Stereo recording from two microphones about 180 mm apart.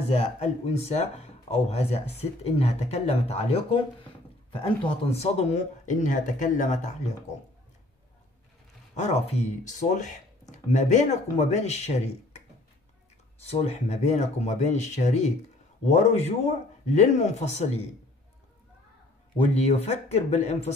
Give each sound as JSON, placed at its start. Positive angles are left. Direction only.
{"t": 0.1, "sound": "speech", "side_deg": 35}
{"t": 8.9, "sound": "speech", "side_deg": 40}
{"t": 13.4, "sound": "speech", "side_deg": 35}
{"t": 19.3, "sound": "speech", "side_deg": 35}